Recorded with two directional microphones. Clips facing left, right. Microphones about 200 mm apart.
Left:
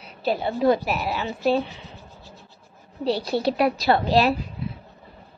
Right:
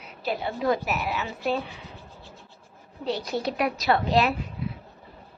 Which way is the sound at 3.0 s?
30° left (ahead or behind).